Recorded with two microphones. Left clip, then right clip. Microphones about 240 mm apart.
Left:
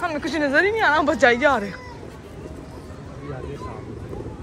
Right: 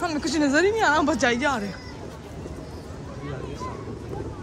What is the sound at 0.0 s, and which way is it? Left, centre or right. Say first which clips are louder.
Speech: left 1 dB; centre.